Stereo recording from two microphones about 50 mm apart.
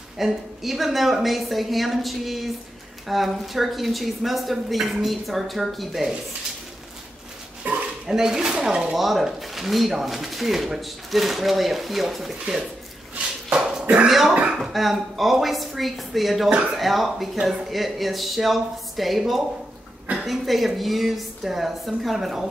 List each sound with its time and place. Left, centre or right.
0.2 s speech: centre
7.7 s dog: right
8.1 s speech: centre
8.9 s speech: centre
13.5 s dog: centre
14.0 s speech: centre